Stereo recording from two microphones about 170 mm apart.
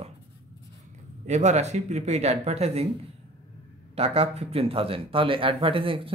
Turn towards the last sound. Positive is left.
turn(degrees=-30)  # may be behind; listen again after turning